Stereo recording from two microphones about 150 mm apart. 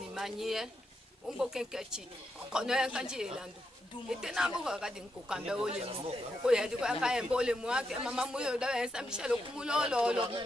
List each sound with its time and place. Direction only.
0.1 s a man's voice: centre (ahead or behind)
5.7 s speech: 40° right (ahead or behind)
6.4 s a man's voice: 5° right (ahead or behind)